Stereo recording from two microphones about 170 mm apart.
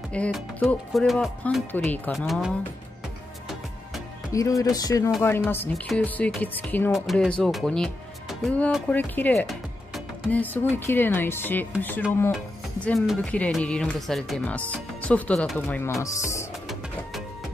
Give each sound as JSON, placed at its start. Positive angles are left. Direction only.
{"t": 0.1, "sound": "speech", "side_deg": 5}
{"t": 2.1, "sound": "speech", "side_deg": 0}
{"t": 4.3, "sound": "speech", "side_deg": 20}
{"t": 6.9, "sound": "speech", "side_deg": 0}
{"t": 9.5, "sound": "music", "side_deg": 0}
{"t": 10.4, "sound": "speech", "side_deg": 10}
{"t": 12.8, "sound": "speech", "side_deg": 0}